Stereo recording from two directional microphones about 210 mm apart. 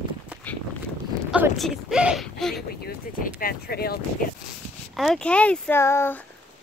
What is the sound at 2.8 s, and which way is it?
Speech, 45° left (ahead or behind).